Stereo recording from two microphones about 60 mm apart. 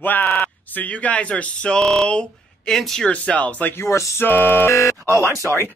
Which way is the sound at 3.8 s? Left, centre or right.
Left.